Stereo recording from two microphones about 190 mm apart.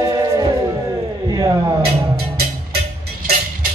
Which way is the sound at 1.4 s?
20° right (ahead or behind).